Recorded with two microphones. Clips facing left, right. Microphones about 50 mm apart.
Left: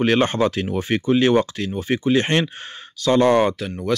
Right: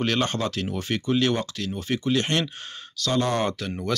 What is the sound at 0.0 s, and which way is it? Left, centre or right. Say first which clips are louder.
Speech: left 7 dB; left.